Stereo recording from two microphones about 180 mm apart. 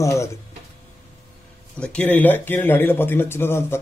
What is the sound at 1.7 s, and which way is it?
A man's voice, 5° left (ahead or behind).